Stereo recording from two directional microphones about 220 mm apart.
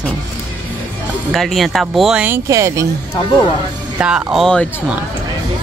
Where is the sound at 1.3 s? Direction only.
Centre (ahead or behind).